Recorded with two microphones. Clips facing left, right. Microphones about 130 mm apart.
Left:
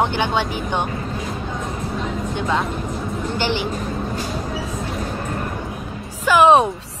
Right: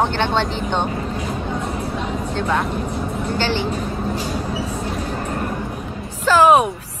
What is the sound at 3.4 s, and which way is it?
Speech, 15° left (ahead or behind).